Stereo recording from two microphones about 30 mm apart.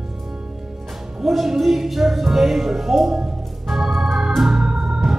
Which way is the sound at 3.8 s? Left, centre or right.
Centre.